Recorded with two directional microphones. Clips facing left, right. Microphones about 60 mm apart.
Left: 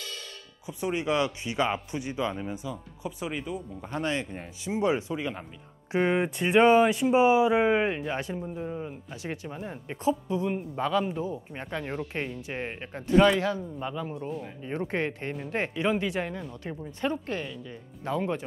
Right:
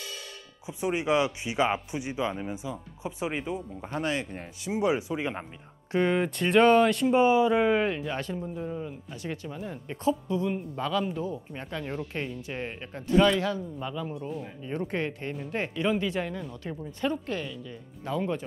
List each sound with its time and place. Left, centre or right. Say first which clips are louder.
0.7 s speech: right 1 dB; centre
3.9 s speech: even; centre
4.7 s speech: even; centre
5.9 s speech: even; left
8.4 s speech: even; centre
8.7 s speech: even; left
13.9 s speech: even; left